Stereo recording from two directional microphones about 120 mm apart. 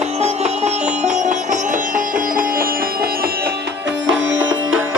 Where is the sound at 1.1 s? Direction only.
90° right.